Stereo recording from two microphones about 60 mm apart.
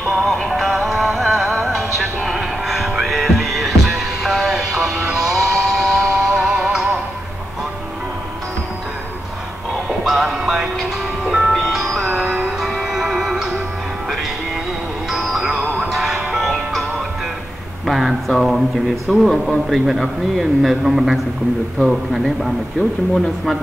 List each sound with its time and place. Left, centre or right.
0.1 s music: centre
10.0 s music: centre
12.1 s music: right
12.4 s music: centre
15.0 s music: centre
17.8 s a sound: centre
19.7 s a man's voice: centre